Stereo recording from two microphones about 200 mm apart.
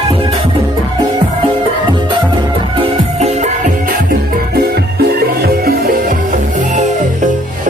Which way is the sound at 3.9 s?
50° right (ahead or behind).